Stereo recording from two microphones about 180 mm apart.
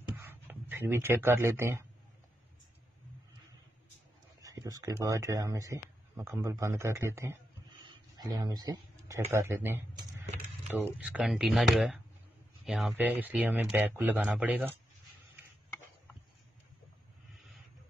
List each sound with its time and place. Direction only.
0.3 s speech: 10° right (ahead or behind)
4.4 s speech: 20° right (ahead or behind)
7.8 s a sound: 20° right (ahead or behind)
9.3 s speech: 15° right (ahead or behind)